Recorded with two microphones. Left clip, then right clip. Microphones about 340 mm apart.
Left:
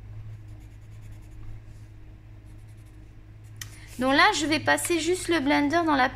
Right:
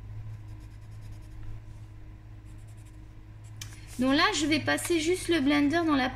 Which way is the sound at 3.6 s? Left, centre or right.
Left.